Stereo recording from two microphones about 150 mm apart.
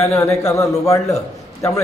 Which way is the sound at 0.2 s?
20° left (ahead or behind).